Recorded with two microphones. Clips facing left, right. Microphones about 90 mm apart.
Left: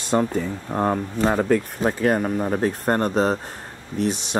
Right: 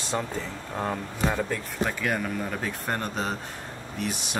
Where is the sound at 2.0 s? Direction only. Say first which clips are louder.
Left 8 dB; 40° left (ahead or behind).